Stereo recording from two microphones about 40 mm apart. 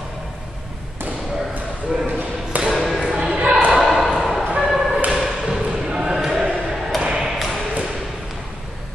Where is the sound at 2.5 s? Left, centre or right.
Right.